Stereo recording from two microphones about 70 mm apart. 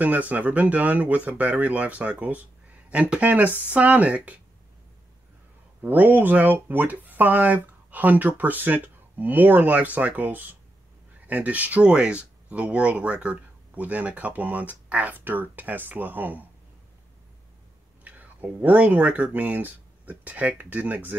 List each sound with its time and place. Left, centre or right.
0.0 s speech: right
5.8 s speech: right
18.0 s speech: right